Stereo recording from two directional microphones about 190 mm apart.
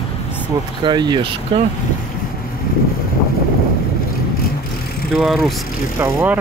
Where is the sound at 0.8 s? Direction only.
25° right (ahead or behind).